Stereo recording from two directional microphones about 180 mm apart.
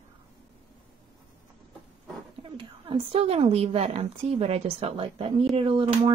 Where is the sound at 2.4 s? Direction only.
30° right (ahead or behind).